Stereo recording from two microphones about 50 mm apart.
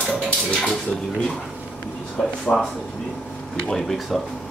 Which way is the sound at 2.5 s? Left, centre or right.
Centre.